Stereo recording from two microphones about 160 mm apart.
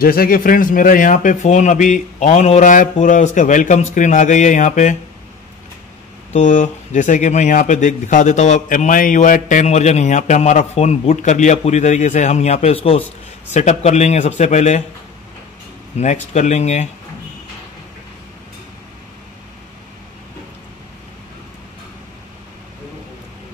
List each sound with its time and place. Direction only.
0.0 s speech: 65° left (ahead or behind); by 4.9 s 50° left (ahead or behind)
6.3 s speech: 50° left (ahead or behind)
16.0 s speech: 45° left (ahead or behind)